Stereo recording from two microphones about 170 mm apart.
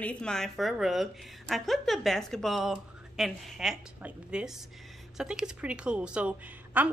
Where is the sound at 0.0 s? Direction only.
5° left (ahead or behind).